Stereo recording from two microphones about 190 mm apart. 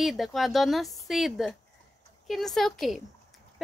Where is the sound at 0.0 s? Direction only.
Centre (ahead or behind).